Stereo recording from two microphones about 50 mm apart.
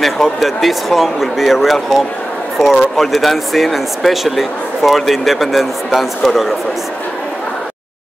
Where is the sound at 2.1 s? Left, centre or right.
Left.